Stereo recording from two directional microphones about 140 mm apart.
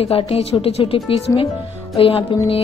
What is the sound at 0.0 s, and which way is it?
A woman's voice, 45° left (ahead or behind).